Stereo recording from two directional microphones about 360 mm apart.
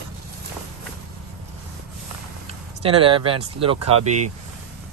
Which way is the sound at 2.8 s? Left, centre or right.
Centre.